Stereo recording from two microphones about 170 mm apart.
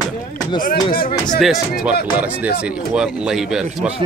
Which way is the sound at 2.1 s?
10° right (ahead or behind).